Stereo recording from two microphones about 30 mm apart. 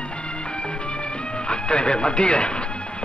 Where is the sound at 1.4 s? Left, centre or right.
Left.